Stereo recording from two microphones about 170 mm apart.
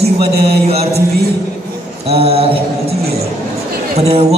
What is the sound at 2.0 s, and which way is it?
Speech, 35° right (ahead or behind).